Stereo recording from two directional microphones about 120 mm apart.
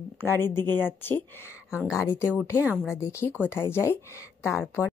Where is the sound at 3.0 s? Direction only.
25° left (ahead or behind).